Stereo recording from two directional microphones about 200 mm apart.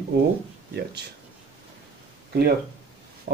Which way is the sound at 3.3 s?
45° right (ahead or behind).